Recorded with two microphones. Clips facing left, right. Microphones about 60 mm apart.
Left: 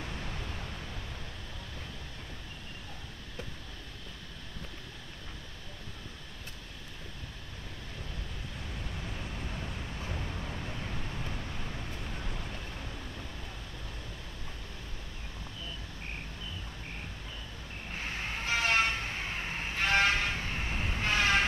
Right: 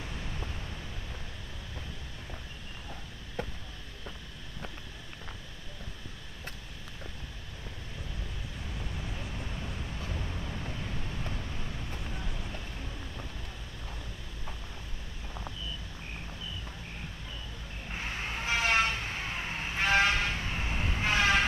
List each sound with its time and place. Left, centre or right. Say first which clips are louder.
3.4 s a sound: right 7 dB; right
9.0 s vehicle: even; centre
17.9 s vehicle: right 1 dB; centre
19.1 s vehicle: right 1 dB; centre
19.7 s vehicle: right 1 dB; right
21.1 s vehicle: right 1 dB; right